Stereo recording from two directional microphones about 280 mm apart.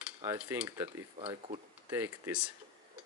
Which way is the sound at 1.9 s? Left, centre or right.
Centre.